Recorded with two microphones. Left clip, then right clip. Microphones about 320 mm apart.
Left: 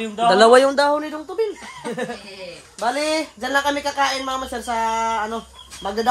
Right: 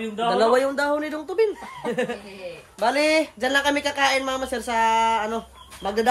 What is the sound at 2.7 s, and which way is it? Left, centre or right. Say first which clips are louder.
Speech: right 1 dB; centre.